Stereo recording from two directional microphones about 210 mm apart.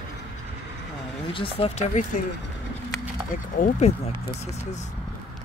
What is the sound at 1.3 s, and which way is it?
Speech, 25° left (ahead or behind).